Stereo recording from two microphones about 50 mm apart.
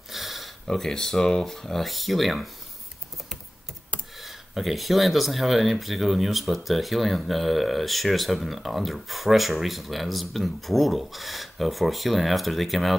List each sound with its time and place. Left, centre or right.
0.1 s a sound: centre
0.7 s speech: centre
4.2 s speech: centre